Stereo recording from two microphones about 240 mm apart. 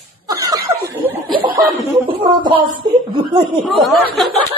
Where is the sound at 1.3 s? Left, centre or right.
Centre.